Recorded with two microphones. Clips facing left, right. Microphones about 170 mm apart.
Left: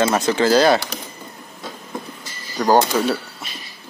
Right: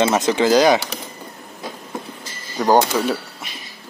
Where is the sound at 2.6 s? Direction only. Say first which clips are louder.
Even; 10° left (ahead or behind).